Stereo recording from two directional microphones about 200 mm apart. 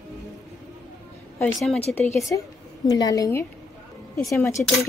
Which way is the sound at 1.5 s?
Centre (ahead or behind).